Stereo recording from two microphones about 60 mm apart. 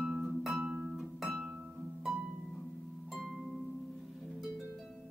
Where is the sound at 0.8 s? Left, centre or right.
Centre.